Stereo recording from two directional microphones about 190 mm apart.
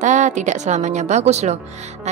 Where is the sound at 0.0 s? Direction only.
40° right (ahead or behind).